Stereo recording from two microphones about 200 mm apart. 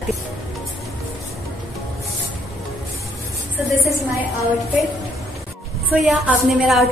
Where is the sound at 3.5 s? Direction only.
15° right (ahead or behind).